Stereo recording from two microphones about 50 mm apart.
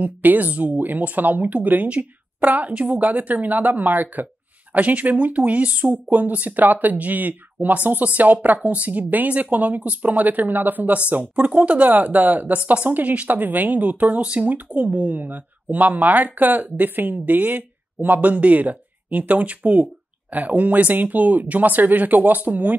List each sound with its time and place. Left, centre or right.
0.0 s speech: right